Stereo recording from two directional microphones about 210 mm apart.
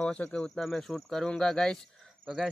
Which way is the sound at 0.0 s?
5° left (ahead or behind).